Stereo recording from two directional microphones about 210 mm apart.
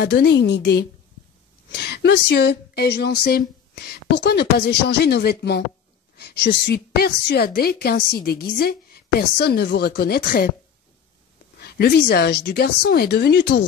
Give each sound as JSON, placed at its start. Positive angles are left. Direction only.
{"t": 0.0, "sound": "a woman's voice", "side_deg": 50}
{"t": 11.5, "sound": "a woman's voice", "side_deg": 50}